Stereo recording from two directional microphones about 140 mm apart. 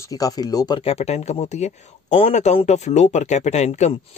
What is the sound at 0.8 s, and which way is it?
Speech, 50° left (ahead or behind).